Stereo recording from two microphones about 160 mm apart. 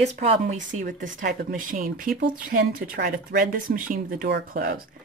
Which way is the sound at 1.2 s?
70° right (ahead or behind).